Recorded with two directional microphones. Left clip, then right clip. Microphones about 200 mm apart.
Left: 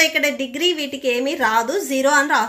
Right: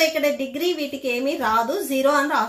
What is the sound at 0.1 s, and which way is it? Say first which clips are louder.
A woman's voice: left 2 dB; 35° left (ahead or behind).